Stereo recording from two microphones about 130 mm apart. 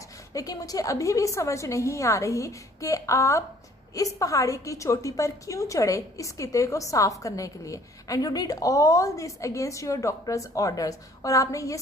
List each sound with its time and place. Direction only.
0.3 s a woman's voice: 25° left (ahead or behind)